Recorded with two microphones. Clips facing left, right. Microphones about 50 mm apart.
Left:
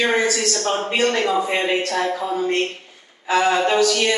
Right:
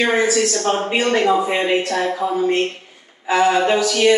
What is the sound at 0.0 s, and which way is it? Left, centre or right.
A man's voice, centre.